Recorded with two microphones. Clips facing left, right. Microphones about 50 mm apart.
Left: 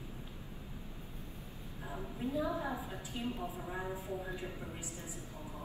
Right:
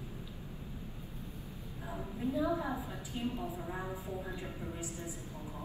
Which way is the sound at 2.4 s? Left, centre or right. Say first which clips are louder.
Right 3 dB; right.